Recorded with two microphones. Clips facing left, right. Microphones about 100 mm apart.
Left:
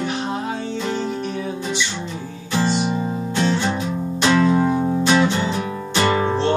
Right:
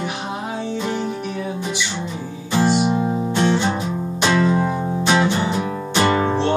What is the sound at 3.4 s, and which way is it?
Music, 20° right (ahead or behind).